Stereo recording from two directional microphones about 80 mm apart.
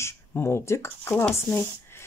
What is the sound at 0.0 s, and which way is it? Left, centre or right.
Speech, left.